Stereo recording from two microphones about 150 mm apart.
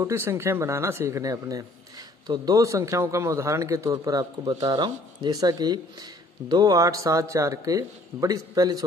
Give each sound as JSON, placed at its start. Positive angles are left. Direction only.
{"t": 0.0, "sound": "speech", "side_deg": -20}